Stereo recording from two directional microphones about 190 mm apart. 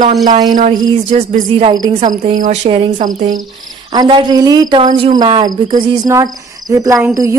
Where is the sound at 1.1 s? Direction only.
35° right (ahead or behind).